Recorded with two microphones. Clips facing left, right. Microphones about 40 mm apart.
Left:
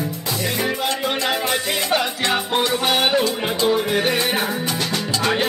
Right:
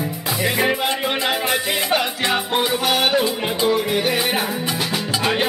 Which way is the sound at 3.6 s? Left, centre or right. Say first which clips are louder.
Even; centre.